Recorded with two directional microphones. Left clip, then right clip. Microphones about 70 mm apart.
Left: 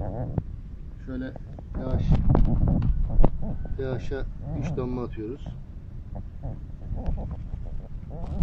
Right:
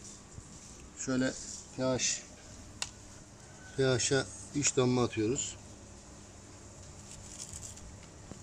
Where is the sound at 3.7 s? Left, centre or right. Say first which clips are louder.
Right 4 dB; right.